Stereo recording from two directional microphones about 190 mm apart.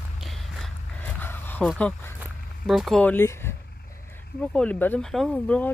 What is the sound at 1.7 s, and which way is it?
Speech, 10° left (ahead or behind).